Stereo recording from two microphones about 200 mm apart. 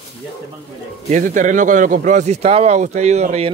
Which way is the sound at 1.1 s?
40° right (ahead or behind).